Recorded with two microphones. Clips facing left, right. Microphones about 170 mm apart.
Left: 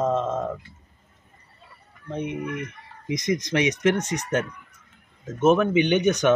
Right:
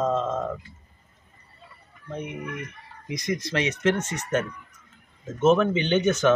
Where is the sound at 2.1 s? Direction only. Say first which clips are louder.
Left 4 dB; 20° left (ahead or behind).